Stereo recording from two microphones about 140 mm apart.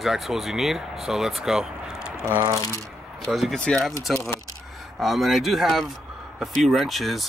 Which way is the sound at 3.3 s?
Centre (ahead or behind).